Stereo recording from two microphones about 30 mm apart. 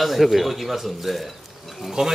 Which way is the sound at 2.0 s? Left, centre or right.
Centre.